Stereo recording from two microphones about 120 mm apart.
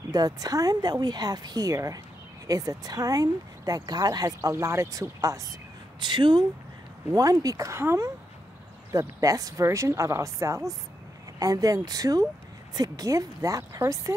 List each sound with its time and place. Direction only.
0.1 s speech: 35° right (ahead or behind)
5.9 s speech: 40° right (ahead or behind)
7.4 s a woman's voice: 25° right (ahead or behind)